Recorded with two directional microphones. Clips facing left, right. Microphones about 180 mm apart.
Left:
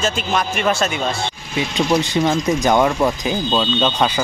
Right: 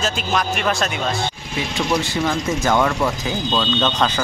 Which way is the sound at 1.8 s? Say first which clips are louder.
Left 4 dB; 20° left (ahead or behind).